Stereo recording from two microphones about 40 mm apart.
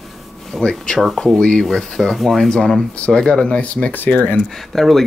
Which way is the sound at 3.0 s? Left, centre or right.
Left.